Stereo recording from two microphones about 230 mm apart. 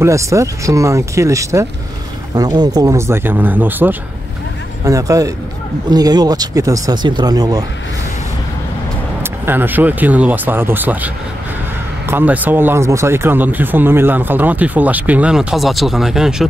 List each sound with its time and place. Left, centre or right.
0.0 s speech: centre
9.2 s speech: centre
12.1 s speech: centre